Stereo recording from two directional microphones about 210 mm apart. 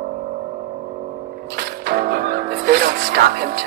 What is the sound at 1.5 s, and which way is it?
Music, 45° right (ahead or behind).